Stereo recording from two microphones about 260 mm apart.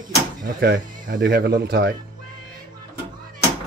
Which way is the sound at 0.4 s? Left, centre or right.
Right.